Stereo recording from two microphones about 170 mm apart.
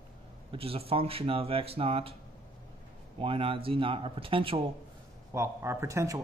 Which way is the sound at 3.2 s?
30° right (ahead or behind).